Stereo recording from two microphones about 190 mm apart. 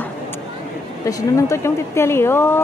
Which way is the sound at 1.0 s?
15° left (ahead or behind).